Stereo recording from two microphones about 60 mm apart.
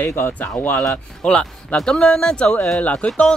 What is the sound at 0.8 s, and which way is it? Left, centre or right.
Speech, centre.